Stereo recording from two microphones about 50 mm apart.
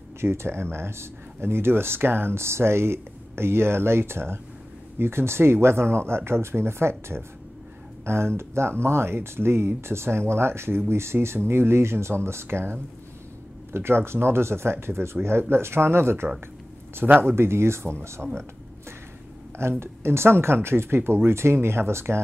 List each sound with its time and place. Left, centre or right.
0.2 s speech: right
19.8 s speech: right